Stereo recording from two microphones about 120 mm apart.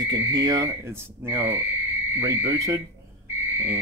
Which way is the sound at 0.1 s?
35° right (ahead or behind).